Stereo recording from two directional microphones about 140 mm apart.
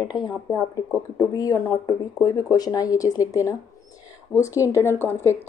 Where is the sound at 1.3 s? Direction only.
25° left (ahead or behind).